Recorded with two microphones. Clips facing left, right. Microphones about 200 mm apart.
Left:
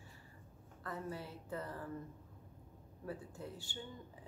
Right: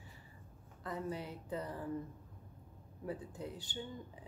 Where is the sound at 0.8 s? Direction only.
20° right (ahead or behind).